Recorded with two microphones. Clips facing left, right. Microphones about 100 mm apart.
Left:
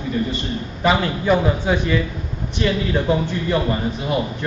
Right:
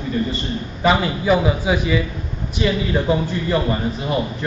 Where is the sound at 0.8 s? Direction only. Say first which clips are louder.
Right 1 dB; 5° right (ahead or behind).